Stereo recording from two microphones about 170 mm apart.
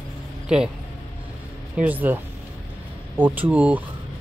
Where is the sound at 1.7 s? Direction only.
10° right (ahead or behind).